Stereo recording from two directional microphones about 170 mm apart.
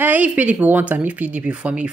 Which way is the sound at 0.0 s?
10° right (ahead or behind).